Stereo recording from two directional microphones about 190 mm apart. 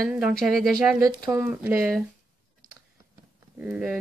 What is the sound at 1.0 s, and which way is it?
Speech, 20° right (ahead or behind).